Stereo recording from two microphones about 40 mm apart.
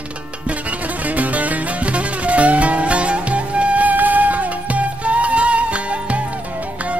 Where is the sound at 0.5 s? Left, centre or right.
Right.